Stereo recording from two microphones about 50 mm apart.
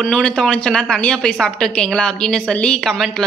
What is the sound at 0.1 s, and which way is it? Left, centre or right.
A man's voice, centre.